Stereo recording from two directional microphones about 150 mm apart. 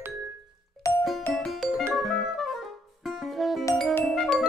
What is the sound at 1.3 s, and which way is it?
Music, centre (ahead or behind).